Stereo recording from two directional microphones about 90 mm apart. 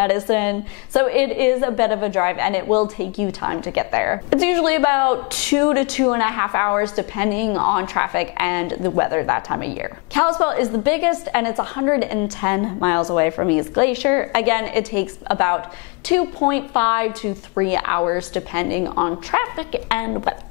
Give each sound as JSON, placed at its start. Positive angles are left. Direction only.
{"t": 0.0, "sound": "a woman's voice", "side_deg": 15}
{"t": 20.1, "sound": "a woman's voice", "side_deg": 30}